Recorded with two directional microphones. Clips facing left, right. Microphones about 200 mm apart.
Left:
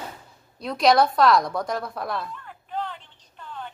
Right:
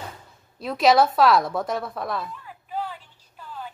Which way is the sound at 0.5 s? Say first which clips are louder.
Right 1 dB; 5° right (ahead or behind).